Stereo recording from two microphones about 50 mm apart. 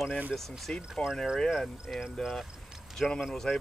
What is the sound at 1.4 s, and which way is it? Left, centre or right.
Speech, centre.